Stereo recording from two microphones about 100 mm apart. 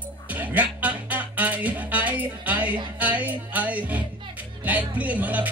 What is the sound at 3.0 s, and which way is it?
Speech, 15° right (ahead or behind).